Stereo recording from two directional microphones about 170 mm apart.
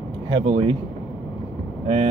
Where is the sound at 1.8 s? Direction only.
40° right (ahead or behind).